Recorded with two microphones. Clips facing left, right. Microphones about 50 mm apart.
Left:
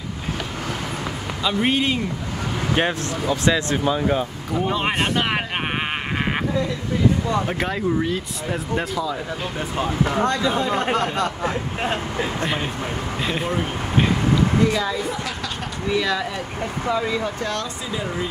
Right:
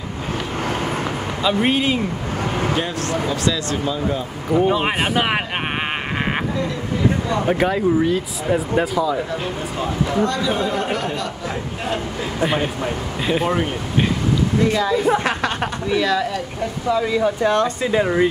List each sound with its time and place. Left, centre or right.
1.4 s speech: centre
3.3 s speech: left
4.5 s a man's voice: centre
4.7 s a man's voice: centre
7.4 s speech: centre
9.8 s speech: left
12.4 s a man's voice: centre
15.0 s a sound: right
15.9 s speech: centre
17.4 s speech: right
17.9 s speech: right